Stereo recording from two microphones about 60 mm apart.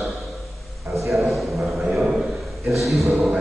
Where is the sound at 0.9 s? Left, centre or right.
Right.